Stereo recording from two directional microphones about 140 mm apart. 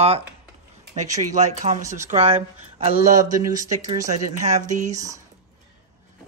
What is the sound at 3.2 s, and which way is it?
Speech, 25° right (ahead or behind).